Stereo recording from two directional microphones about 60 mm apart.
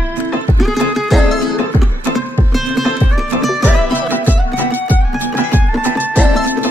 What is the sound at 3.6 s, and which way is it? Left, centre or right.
Music, right.